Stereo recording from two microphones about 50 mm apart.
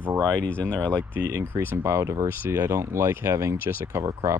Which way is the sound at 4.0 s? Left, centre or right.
Right.